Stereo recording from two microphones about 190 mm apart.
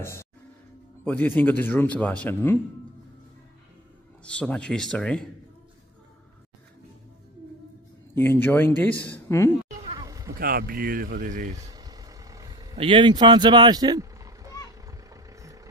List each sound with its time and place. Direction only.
0.0 s speech: 15° left (ahead or behind)
4.2 s speech: 5° left (ahead or behind)
8.1 s speech: 10° left (ahead or behind)
9.8 s a sound: 20° right (ahead or behind)
10.4 s speech: 50° right (ahead or behind)
11.5 s vehicle: 20° right (ahead or behind)
12.7 s sheep: 25° right (ahead or behind)